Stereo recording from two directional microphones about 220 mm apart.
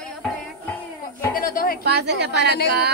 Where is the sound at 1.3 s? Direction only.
40° left (ahead or behind).